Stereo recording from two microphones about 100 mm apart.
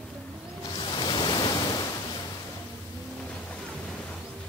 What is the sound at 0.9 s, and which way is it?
Waves, 50° left (ahead or behind).